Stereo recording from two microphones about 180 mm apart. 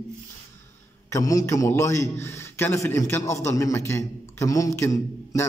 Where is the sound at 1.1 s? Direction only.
20° left (ahead or behind).